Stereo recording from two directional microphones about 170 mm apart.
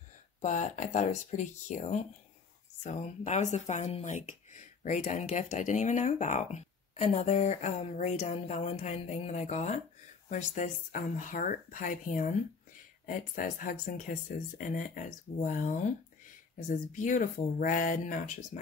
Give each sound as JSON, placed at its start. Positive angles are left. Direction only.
{"t": 0.4, "sound": "speech", "side_deg": 45}